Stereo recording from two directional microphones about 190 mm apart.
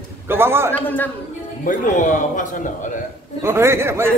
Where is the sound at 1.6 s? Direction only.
40° left (ahead or behind).